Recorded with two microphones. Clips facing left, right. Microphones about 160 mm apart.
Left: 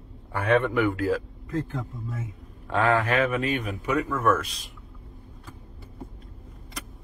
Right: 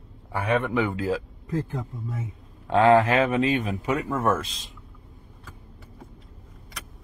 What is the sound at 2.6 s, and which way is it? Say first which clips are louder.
Speech: right 6 dB; 30° right (ahead or behind).